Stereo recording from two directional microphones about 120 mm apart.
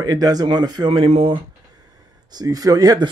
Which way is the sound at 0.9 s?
50° right (ahead or behind).